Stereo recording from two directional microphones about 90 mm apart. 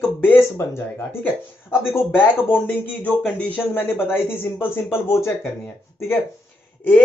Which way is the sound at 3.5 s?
25° left (ahead or behind).